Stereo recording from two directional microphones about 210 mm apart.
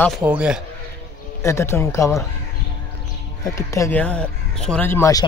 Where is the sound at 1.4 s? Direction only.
10° left (ahead or behind).